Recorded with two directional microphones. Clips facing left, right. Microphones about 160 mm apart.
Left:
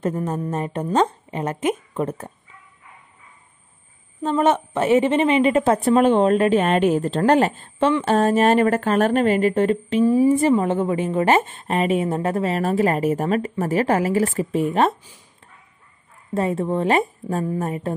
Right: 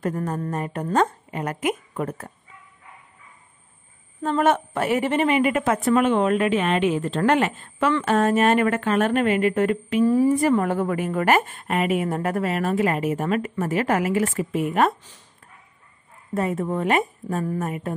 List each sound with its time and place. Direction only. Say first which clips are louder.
0.0 s a woman's voice: left 2 dB; 20° left (ahead or behind)
4.2 s a woman's voice: left 2 dB; 20° left (ahead or behind)
16.3 s a woman's voice: left 3 dB; 30° left (ahead or behind)